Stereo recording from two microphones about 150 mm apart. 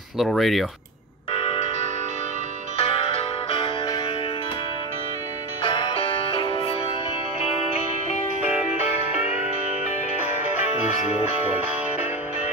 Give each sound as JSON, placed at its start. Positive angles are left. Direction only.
{"t": 0.2, "sound": "speech", "side_deg": 0}
{"t": 1.3, "sound": "music", "side_deg": 40}
{"t": 2.8, "sound": "music", "side_deg": 40}
{"t": 5.6, "sound": "music", "side_deg": 35}